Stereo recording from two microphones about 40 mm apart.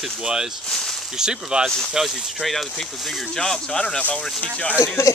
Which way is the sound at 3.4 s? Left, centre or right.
Centre.